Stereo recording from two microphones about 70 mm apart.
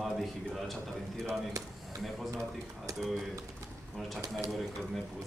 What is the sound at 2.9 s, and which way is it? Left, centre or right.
Speech, right.